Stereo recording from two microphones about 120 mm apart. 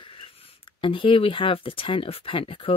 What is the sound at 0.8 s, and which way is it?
Speech, 45° left (ahead or behind).